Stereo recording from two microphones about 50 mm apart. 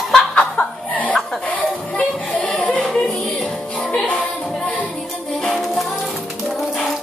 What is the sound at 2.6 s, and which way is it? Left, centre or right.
Music, left.